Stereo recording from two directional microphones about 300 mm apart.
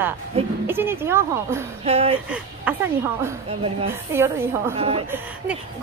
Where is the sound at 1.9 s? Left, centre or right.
Centre.